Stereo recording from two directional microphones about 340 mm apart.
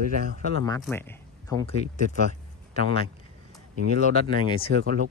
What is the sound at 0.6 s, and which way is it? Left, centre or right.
Speech, centre.